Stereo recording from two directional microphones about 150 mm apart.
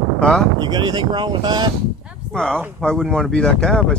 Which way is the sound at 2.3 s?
5° left (ahead or behind).